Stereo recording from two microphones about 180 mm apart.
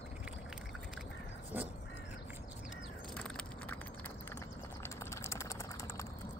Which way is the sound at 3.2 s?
5° left (ahead or behind).